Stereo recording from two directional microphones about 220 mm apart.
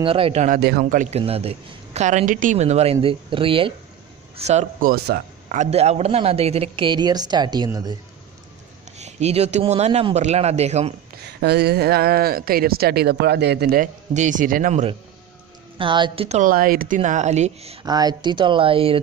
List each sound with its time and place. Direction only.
0.0 s a man's voice: 25° right (ahead or behind)
0.6 s a man's voice: 45° right (ahead or behind); by 7.9 s 20° right (ahead or behind)
8.9 s a man's voice: 30° right (ahead or behind)
11.4 s a woman's voice: 50° right (ahead or behind); by 17.7 s 30° right (ahead or behind)
17.8 s a man's voice: 20° right (ahead or behind)